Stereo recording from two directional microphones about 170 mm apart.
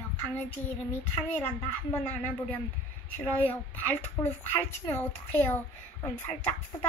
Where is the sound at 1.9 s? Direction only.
10° left (ahead or behind).